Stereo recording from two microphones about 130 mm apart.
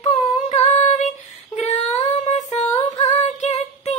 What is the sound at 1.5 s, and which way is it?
Female singing, 65° left (ahead or behind).